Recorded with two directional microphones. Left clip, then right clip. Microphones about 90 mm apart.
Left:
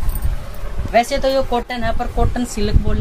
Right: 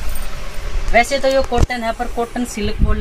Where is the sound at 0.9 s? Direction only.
15° left (ahead or behind).